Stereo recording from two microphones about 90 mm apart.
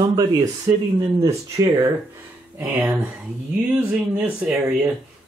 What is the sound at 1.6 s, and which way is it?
Speech, 40° right (ahead or behind).